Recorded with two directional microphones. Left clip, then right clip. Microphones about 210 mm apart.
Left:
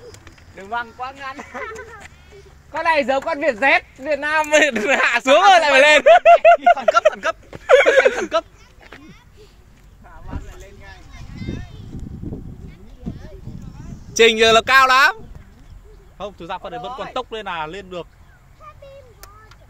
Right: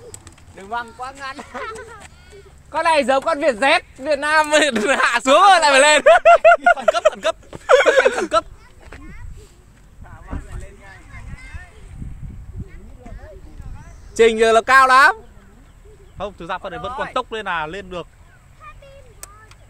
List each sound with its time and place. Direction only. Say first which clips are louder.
0.6 s speech: left 1 dB; 20° right (ahead or behind)
2.7 s speech: right 2 dB; 25° right (ahead or behind)
7.5 s a sound: left 1 dB; 10° right (ahead or behind)
8.2 s speech: right 2 dB; 60° right (ahead or behind)
10.2 s a sound: right 1 dB; 20° right (ahead or behind)
14.1 s speech: left 1 dB; 5° right (ahead or behind)
16.2 s speech: right 2 dB; 45° right (ahead or behind)